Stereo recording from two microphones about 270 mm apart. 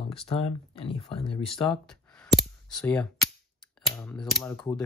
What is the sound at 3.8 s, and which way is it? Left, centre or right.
Speech, centre.